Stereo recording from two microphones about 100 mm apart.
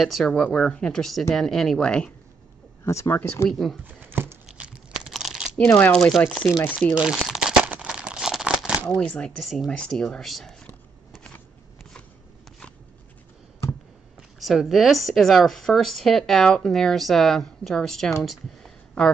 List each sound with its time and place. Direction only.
0.0 s speech: centre (ahead or behind)
2.8 s speech: 30° left (ahead or behind)
3.4 s speech: 5° left (ahead or behind)
3.8 s a sound: 20° right (ahead or behind)
5.0 s crumpling: centre (ahead or behind)
5.8 s speech: 10° left (ahead or behind)
7.0 s crumpling: 5° right (ahead or behind)
8.8 s speech: 10° left (ahead or behind)
9.7 s speech: 10° left (ahead or behind)
14.4 s speech: centre (ahead or behind)